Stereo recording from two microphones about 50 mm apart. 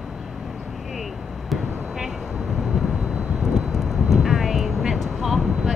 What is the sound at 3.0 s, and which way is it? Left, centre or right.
Vehicle, right.